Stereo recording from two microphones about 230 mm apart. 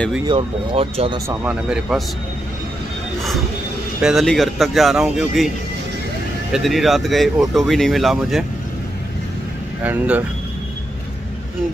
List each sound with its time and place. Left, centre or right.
0.3 s speech: right
1.4 s speech: centre
4.0 s speech: centre
6.5 s speech: centre
9.8 s speech: centre